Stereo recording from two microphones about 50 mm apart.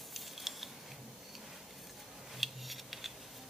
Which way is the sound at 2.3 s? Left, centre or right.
Centre.